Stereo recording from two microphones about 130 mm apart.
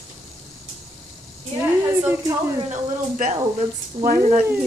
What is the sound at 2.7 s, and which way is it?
Speech, 80° right.